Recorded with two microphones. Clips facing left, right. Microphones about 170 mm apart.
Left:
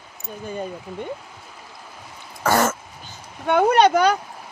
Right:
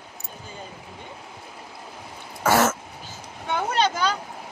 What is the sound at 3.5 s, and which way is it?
Speech, 60° left (ahead or behind).